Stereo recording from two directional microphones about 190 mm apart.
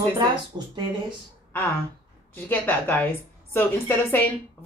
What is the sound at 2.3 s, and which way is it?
Speech, 10° left (ahead or behind).